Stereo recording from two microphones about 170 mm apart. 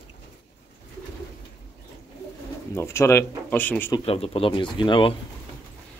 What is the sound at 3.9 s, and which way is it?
Speech, 35° left (ahead or behind).